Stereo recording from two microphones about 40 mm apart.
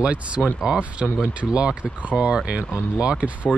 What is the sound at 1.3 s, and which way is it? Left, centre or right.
Speech, right.